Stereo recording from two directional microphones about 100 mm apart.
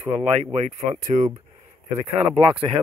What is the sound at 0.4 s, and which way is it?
Speech, 90° right.